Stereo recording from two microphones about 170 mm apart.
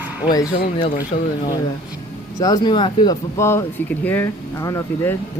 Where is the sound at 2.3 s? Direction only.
20° left (ahead or behind).